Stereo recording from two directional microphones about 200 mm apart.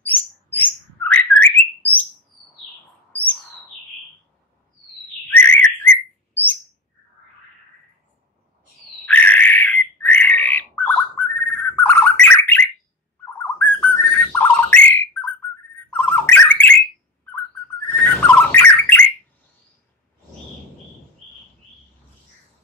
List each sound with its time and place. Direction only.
0.0 s bird: 10° left (ahead or behind)
3.1 s bird: 10° left (ahead or behind)
5.3 s bird: 10° left (ahead or behind)
9.0 s bird: 10° left (ahead or behind)
18.0 s bird: 10° left (ahead or behind)